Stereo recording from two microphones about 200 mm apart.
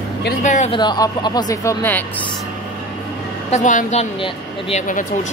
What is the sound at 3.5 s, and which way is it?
Speech, 40° left (ahead or behind).